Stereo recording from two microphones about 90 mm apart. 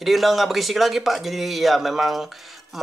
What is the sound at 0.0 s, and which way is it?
Speech, centre (ahead or behind).